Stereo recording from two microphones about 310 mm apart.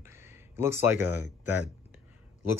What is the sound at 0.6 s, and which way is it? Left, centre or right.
Speech, centre.